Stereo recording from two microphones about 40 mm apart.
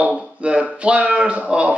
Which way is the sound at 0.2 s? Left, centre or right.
Right.